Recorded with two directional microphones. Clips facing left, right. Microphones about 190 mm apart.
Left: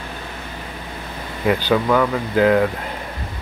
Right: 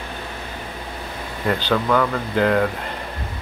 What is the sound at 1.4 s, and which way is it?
Speech, 5° left (ahead or behind).